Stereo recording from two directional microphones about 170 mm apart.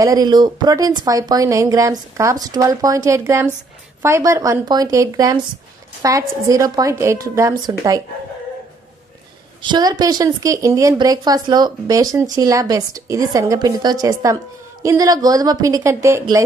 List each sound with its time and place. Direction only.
0.0 s a woman's voice: 20° right (ahead or behind)
9.6 s a woman's voice: 25° right (ahead or behind)